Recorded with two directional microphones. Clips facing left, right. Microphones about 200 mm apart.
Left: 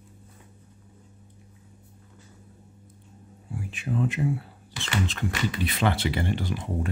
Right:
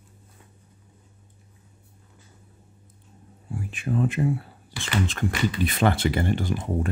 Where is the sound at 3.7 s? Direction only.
50° right (ahead or behind).